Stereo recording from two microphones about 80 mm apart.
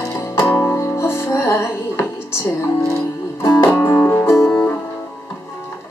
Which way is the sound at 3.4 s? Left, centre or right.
Left.